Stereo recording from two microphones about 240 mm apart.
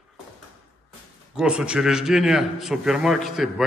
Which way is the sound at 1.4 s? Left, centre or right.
Centre.